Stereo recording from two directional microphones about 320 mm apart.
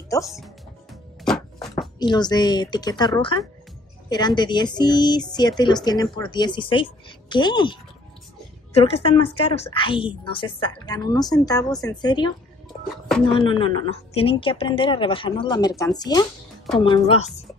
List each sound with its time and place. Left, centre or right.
0.2 s speech: centre
1.2 s music: centre
2.0 s speech: centre
4.1 s speech: centre
13.3 s speech: centre